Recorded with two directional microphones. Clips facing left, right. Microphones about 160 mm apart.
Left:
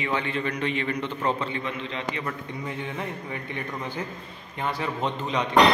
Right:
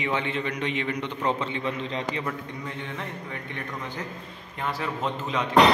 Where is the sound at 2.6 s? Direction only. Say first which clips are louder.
Left 5 dB; 10° left (ahead or behind).